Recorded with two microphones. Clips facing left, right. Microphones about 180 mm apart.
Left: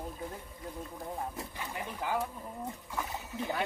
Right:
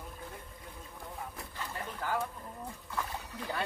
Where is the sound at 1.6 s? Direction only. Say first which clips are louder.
Right 1 dB; 15° left (ahead or behind).